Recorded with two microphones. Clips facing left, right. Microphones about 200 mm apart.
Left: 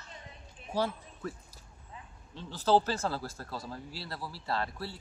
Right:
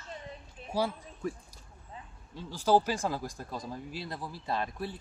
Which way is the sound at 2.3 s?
10° right (ahead or behind).